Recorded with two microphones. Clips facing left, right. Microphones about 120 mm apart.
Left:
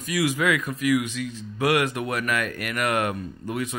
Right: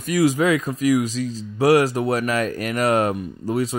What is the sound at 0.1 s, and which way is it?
Speech, 35° right (ahead or behind).